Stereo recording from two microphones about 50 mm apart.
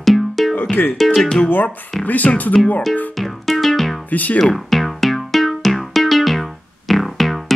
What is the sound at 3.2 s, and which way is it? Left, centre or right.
Music, centre.